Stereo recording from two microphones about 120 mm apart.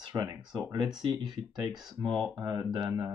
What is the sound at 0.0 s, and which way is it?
Speech, 35° right (ahead or behind).